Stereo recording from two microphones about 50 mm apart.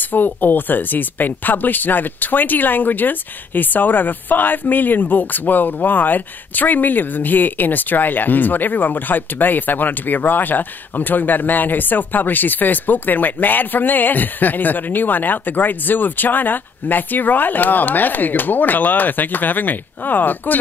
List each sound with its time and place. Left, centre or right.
0.1 s speech: left